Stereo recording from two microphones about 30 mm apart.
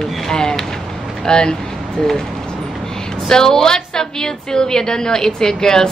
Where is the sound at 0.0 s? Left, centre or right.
Left.